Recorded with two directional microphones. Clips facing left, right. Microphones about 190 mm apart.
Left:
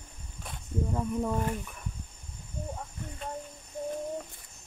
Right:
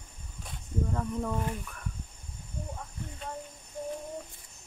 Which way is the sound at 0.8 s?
15° left (ahead or behind).